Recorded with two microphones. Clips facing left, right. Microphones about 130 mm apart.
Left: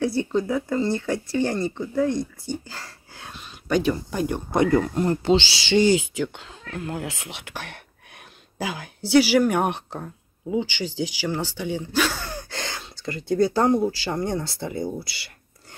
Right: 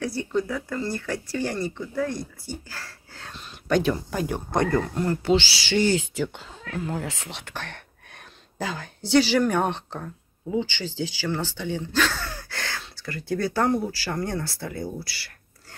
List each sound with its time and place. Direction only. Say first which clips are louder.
0.0 s speech: left 3 dB; 25° left (ahead or behind)
2.7 s whispering: left 1 dB; 15° left (ahead or behind)
3.6 s speech: even; centre (ahead or behind)
4.7 s speech: left 3 dB; 20° left (ahead or behind)
6.1 s a woman's voice: left 1 dB; centre (ahead or behind); by 15.3 s 20° left (ahead or behind)